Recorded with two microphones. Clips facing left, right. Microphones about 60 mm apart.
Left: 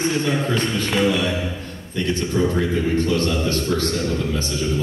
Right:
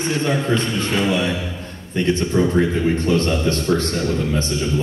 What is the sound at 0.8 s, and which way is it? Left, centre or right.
A man's voice, right.